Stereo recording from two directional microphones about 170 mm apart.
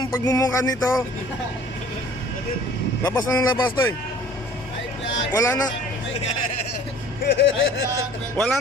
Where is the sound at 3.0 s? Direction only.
15° left (ahead or behind).